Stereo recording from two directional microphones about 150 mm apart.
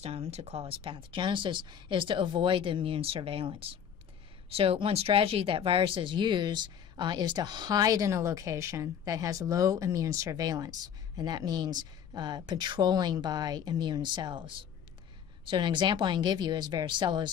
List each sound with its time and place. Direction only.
0.0 s speech: 45° right (ahead or behind)